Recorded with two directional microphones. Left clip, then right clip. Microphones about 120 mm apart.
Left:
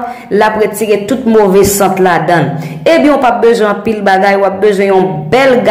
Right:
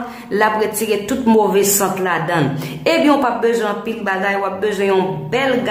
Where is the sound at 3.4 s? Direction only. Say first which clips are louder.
Left 9 dB; 30° left (ahead or behind).